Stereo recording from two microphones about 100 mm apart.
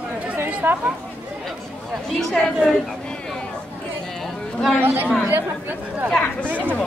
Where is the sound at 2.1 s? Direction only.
5° left (ahead or behind).